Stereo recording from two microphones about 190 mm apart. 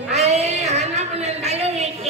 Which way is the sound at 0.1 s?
35° right (ahead or behind).